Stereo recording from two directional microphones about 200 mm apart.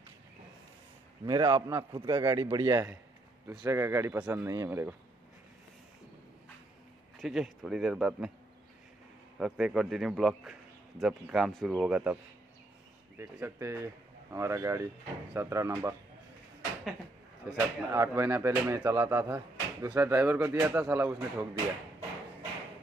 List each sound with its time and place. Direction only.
1.2 s speech: 20° right (ahead or behind)
7.2 s speech: centre (ahead or behind)
9.4 s speech: centre (ahead or behind)
13.2 s speech: 15° right (ahead or behind)
17.5 s speech: 15° right (ahead or behind)